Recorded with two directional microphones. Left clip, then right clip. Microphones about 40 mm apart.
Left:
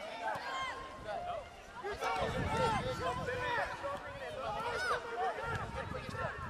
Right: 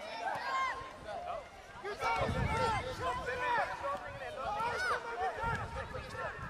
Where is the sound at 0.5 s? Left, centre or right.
Right.